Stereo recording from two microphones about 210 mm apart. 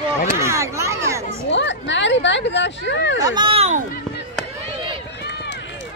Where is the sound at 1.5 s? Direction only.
60° left (ahead or behind).